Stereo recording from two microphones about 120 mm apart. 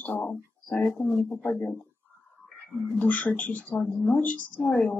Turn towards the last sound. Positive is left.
turn(degrees=10)  # may be behind; listen again after turning